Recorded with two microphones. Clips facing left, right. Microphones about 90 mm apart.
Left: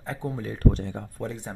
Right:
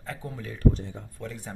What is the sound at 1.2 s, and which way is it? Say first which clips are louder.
Speech: left 3 dB; 25° left (ahead or behind).